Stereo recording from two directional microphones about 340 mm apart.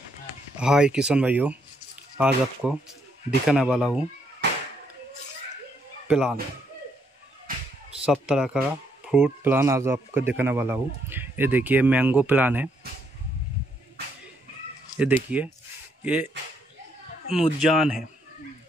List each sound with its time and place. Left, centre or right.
0.6 s speech: centre
6.0 s speech: centre
8.0 s speech: centre
15.0 s speech: centre
17.3 s speech: centre